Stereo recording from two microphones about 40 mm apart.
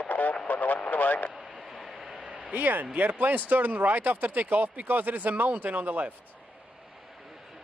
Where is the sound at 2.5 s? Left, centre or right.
Right.